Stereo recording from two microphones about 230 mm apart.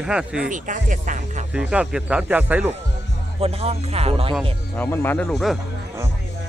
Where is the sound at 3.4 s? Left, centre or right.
Right.